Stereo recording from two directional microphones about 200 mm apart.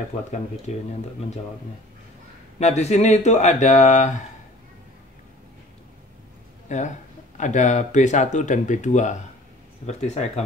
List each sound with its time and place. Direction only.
0.1 s speech: 30° left (ahead or behind)
2.6 s speech: 35° left (ahead or behind)
6.7 s speech: 40° left (ahead or behind)